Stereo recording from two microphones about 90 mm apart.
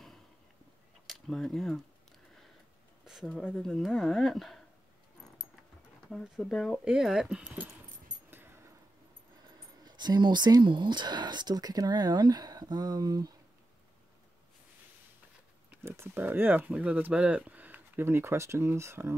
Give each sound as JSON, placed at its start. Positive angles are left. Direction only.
{"t": 1.0, "sound": "speech", "side_deg": 0}
{"t": 3.1, "sound": "speech", "side_deg": -5}
{"t": 3.4, "sound": "speech", "side_deg": 10}
{"t": 6.0, "sound": "speech", "side_deg": 5}
{"t": 6.8, "sound": "speech", "side_deg": -5}
{"t": 8.3, "sound": "dog", "side_deg": -25}
{"t": 9.8, "sound": "speech", "side_deg": -55}
{"t": 15.8, "sound": "speech", "side_deg": -25}